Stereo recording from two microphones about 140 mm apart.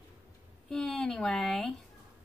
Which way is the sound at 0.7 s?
5° left (ahead or behind).